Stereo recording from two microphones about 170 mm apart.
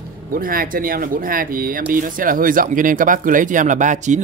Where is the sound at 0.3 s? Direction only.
60° right (ahead or behind).